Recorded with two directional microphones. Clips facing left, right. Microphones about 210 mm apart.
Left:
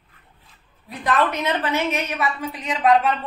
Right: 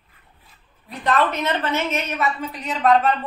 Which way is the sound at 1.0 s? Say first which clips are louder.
Right 1 dB; 10° left (ahead or behind).